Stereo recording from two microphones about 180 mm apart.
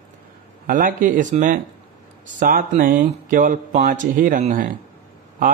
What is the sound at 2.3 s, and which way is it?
Speech, 50° right (ahead or behind).